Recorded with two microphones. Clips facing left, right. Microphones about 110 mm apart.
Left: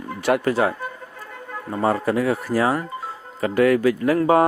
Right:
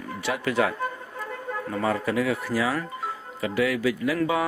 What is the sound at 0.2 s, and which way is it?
A man's voice, 45° left (ahead or behind).